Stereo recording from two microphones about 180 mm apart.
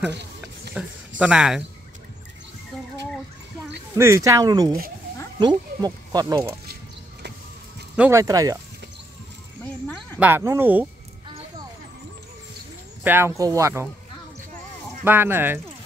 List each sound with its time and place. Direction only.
0.7 s speech: 5° right (ahead or behind)
3.9 s speech: 15° right (ahead or behind)
7.9 s speech: 10° right (ahead or behind)
10.1 s speech: 10° right (ahead or behind)
13.0 s speech: 10° right (ahead or behind)
15.0 s speech: 10° right (ahead or behind)